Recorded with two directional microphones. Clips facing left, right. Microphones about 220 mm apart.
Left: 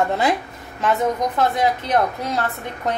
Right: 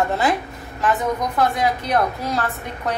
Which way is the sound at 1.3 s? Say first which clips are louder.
Left 1 dB; 20° left (ahead or behind).